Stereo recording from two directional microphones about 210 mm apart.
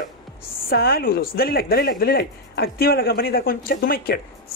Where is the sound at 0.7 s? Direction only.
45° left (ahead or behind).